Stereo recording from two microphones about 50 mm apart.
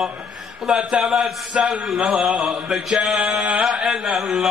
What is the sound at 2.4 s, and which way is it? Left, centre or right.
Mantra, centre.